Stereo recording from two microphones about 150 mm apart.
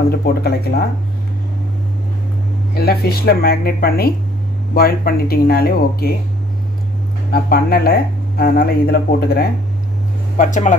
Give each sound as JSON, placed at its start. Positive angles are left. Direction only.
{"t": 0.1, "sound": "speech", "side_deg": 90}
{"t": 2.7, "sound": "speech", "side_deg": 90}
{"t": 7.3, "sound": "speech", "side_deg": 90}
{"t": 10.3, "sound": "speech", "side_deg": 55}